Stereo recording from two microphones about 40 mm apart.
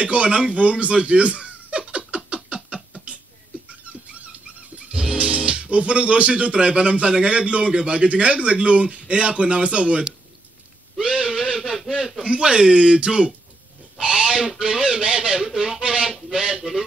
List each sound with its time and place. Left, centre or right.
0.0 s a sound: right
3.6 s dog: right
5.1 s speech: right
11.0 s gasp: right
12.2 s speech: right
13.9 s owl: right
14.6 s speech: right
15.8 s a sound: right